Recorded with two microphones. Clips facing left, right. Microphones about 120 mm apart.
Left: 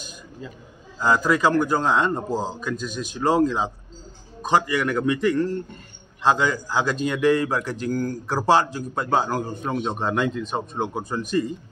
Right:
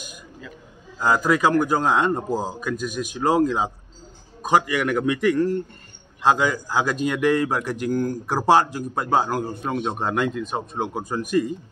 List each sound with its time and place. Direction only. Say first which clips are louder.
0.9 s a man's voice: even; 10° right (ahead or behind)